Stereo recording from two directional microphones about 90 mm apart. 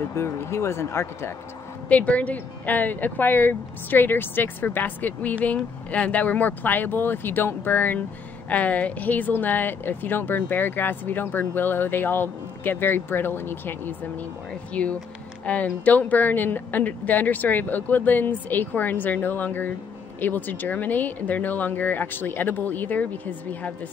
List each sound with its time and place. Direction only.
0.1 s speech: 30° left (ahead or behind)
1.9 s speech: 15° left (ahead or behind)